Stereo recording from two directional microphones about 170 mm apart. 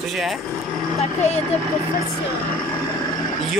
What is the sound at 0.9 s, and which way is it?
Speech, 40° left (ahead or behind).